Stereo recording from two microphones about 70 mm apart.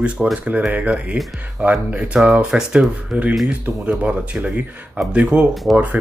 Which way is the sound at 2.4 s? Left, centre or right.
Centre.